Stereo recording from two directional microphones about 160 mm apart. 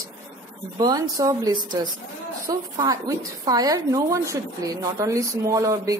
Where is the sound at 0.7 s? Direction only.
25° right (ahead or behind).